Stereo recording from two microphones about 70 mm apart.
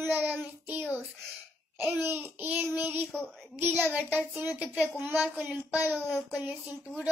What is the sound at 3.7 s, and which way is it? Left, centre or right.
Speech, centre.